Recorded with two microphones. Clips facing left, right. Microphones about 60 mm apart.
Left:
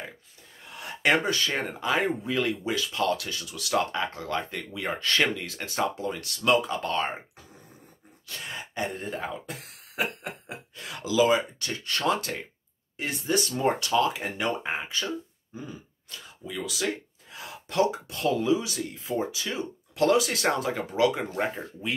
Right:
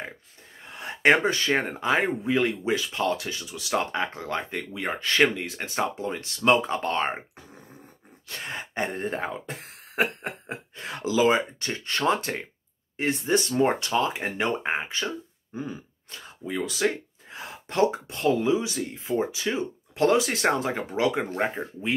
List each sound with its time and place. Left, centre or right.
0.7 s speech: right
8.3 s throat clearing: right
12.9 s speech: right
15.5 s sneeze: right
16.1 s speech: right